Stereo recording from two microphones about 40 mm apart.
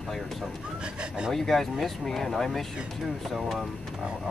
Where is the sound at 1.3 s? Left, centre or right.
Centre.